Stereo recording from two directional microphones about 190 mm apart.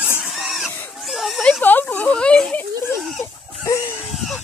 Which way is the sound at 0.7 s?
5° left (ahead or behind).